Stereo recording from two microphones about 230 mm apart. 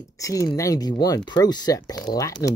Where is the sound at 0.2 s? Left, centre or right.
Centre.